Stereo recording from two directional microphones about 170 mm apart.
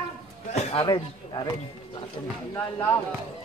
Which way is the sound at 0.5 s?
30° left (ahead or behind).